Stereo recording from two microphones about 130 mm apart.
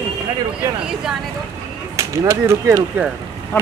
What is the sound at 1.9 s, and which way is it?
Speech, 25° right (ahead or behind).